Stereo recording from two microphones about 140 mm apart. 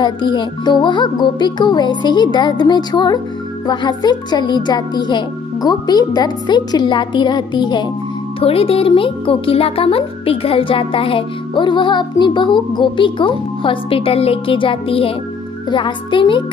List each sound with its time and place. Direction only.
0.0 s speech: 35° left (ahead or behind)